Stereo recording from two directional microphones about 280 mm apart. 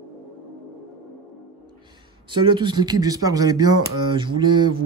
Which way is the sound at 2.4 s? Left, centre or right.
Centre.